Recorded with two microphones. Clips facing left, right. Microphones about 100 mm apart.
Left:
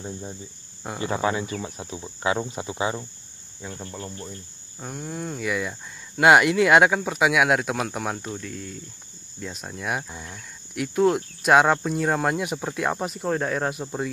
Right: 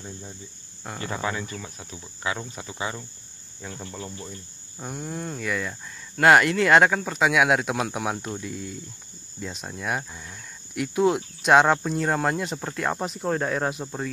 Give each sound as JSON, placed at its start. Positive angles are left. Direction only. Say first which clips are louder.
{"t": 0.0, "sound": "speech", "louder": "left 5 dB", "side_deg": 25}
{"t": 3.6, "sound": "speech", "louder": "left 1 dB", "side_deg": 5}
{"t": 4.0, "sound": "speech", "louder": "left 1 dB", "side_deg": -5}